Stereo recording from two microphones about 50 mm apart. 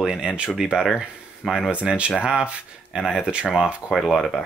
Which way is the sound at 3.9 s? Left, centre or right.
Centre.